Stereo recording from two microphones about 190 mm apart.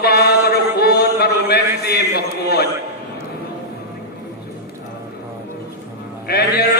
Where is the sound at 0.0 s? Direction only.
60° left (ahead or behind).